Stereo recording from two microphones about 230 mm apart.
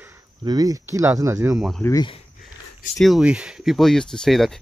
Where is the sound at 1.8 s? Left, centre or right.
Centre.